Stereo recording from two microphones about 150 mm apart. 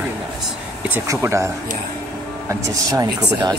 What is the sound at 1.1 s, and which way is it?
Speech, 20° right (ahead or behind).